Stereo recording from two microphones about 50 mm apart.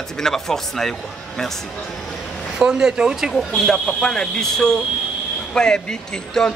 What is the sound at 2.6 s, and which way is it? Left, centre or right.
Speech, centre.